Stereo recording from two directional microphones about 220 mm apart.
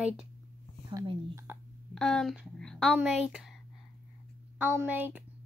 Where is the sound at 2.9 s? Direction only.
5° right (ahead or behind).